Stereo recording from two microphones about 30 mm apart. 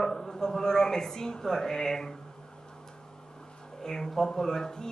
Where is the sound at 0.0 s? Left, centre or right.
Centre.